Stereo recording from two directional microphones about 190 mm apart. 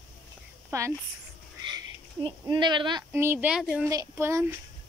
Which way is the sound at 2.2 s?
25° right (ahead or behind).